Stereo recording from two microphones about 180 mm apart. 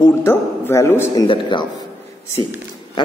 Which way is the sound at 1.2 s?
25° left (ahead or behind).